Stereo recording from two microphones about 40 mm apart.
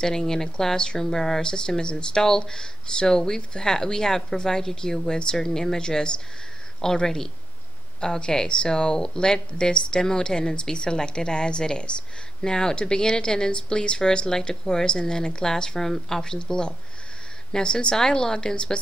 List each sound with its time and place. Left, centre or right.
0.0 s speech: centre
1.4 s a woman's voice: centre